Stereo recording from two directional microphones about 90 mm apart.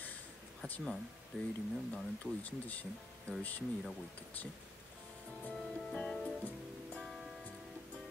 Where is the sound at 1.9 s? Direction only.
15° left (ahead or behind).